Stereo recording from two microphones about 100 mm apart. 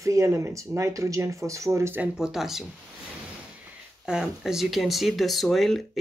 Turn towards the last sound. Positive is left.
turn(degrees=0)  # may be behind; listen again after turning